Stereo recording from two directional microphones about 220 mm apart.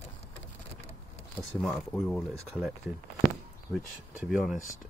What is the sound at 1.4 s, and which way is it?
Speech, centre (ahead or behind).